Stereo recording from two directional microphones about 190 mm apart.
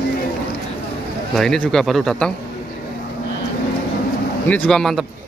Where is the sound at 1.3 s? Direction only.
5° left (ahead or behind).